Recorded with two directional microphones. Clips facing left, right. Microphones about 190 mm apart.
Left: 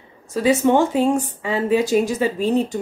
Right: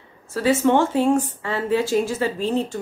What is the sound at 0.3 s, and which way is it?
Speech, 15° left (ahead or behind).